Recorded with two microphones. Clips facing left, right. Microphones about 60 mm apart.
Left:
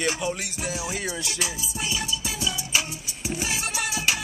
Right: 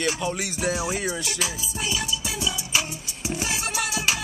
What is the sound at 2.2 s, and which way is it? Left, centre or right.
Music, centre.